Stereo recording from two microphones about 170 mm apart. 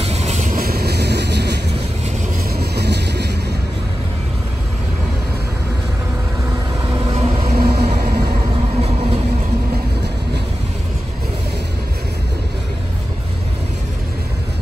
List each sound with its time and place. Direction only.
0.0 s vehicle: 40° right (ahead or behind); by 3.3 s 80° right
7.1 s vehicle: 35° right (ahead or behind)
7.5 s vehicle: 65° right (ahead or behind)
8.3 s vehicle: 35° right (ahead or behind)